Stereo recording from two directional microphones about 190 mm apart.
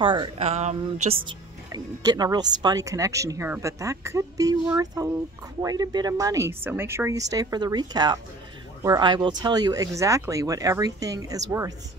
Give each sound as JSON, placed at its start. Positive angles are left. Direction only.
{"t": 0.0, "sound": "speech", "side_deg": -25}
{"t": 1.2, "sound": "speech", "side_deg": -20}